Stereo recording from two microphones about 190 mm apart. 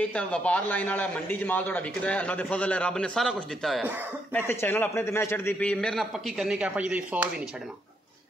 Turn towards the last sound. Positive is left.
turn(degrees=-5)  # may be behind; listen again after turning